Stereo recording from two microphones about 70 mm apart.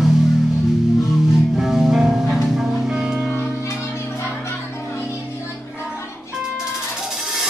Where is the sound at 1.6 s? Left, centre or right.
Centre.